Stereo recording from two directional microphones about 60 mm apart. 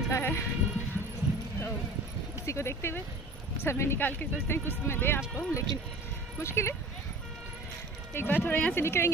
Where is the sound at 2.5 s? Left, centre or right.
Left.